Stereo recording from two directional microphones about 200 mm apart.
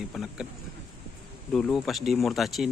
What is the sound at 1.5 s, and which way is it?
Speech, 5° left (ahead or behind).